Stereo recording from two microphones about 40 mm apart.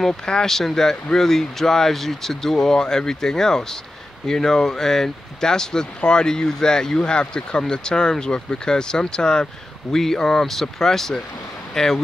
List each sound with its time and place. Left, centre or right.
0.2 s speech: centre
0.5 s speech: centre